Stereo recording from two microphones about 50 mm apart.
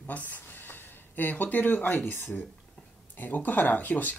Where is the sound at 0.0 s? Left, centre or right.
Left.